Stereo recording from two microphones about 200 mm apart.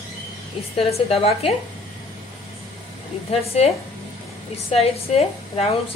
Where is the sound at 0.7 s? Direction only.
30° left (ahead or behind).